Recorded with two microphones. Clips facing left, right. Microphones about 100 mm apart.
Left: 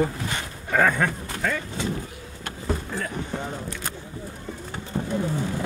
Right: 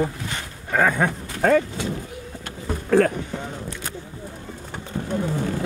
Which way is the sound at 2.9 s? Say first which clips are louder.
Right 15 dB; 65° right (ahead or behind).